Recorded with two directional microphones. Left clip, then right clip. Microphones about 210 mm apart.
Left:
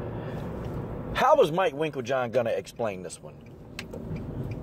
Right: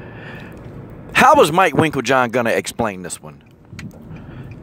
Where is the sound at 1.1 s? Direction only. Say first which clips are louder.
Right 10 dB; 40° right (ahead or behind).